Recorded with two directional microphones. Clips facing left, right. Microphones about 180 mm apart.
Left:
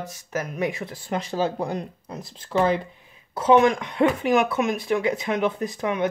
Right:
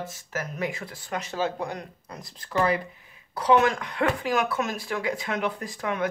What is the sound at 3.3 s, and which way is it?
Speech, 20° left (ahead or behind).